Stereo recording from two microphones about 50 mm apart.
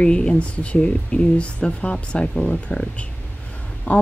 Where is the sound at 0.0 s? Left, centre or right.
Centre.